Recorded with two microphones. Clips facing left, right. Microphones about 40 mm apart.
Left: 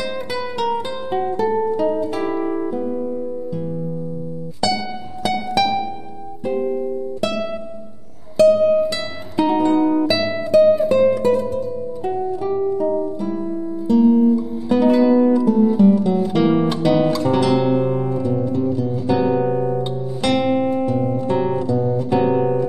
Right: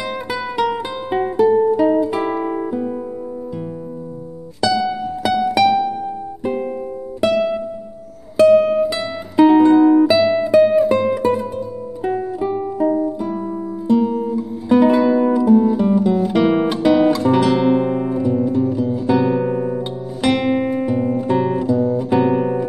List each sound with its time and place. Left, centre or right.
0.0 s music: centre
4.6 s music: centre
6.6 s music: right
8.8 s music: centre
13.8 s guitar: centre
14.1 s music: centre
21.2 s guitar: centre